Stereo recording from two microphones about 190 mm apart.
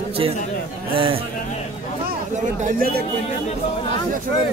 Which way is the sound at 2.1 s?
45° right (ahead or behind).